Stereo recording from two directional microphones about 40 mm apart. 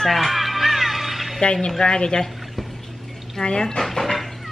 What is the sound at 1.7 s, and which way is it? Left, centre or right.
Speech, centre.